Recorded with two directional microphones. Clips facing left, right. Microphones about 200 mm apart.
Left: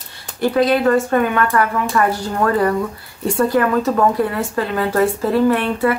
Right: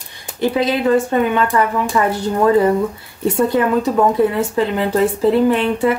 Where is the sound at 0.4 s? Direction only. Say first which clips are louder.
Left 1 dB; 20° right (ahead or behind).